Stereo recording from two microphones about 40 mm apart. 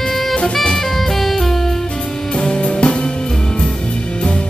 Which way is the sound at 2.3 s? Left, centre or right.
Left.